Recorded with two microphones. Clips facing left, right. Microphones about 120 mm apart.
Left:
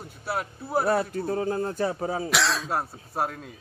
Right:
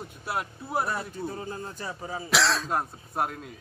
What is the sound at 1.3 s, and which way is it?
Speech, 90° left.